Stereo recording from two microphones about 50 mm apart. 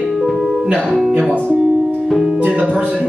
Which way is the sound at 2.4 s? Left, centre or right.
Right.